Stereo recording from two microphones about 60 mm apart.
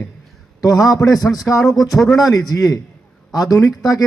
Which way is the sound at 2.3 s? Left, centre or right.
Left.